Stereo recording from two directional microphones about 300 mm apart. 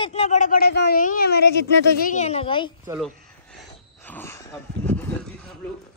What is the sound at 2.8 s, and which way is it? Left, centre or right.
Speech, centre.